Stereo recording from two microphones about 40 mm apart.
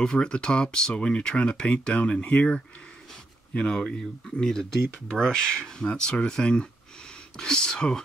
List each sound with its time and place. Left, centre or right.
0.0 s speech: left